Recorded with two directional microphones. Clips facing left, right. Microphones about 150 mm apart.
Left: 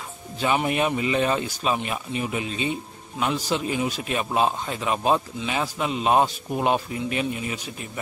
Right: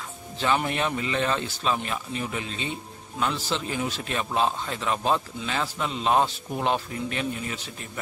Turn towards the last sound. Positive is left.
turn(degrees=15)  # may be behind; listen again after turning